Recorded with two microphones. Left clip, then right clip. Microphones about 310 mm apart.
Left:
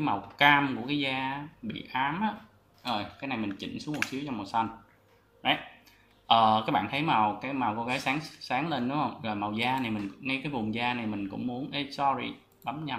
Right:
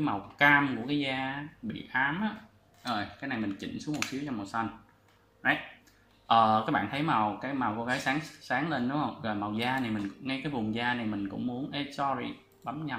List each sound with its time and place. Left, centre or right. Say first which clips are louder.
0.0 s speech: left 2 dB; centre
6.2 s speech: left 1 dB; centre